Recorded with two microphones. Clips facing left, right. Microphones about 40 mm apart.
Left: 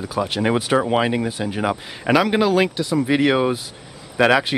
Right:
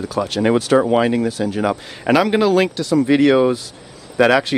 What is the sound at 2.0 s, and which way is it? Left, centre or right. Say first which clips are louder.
Speech: right 2 dB; centre.